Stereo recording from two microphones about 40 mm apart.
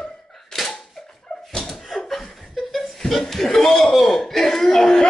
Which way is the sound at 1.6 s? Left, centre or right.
Centre.